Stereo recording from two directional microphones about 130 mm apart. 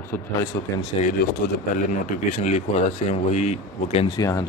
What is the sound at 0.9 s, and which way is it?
Speech, 45° left (ahead or behind).